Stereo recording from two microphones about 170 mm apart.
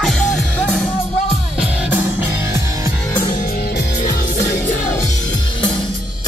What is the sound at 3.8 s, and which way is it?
Music, 50° left (ahead or behind).